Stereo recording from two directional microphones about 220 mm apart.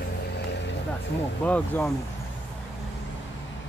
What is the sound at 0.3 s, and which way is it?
Vehicle, 50° left (ahead or behind).